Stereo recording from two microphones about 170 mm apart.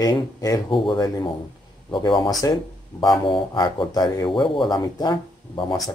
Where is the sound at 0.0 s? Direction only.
20° left (ahead or behind).